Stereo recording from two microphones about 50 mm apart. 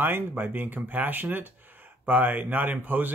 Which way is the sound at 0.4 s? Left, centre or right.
Right.